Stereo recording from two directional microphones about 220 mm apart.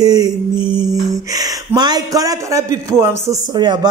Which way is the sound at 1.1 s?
15° right (ahead or behind).